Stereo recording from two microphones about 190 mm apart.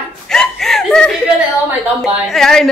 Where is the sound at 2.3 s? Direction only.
Centre (ahead or behind).